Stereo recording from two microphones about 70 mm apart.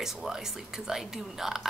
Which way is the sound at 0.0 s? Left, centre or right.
Centre.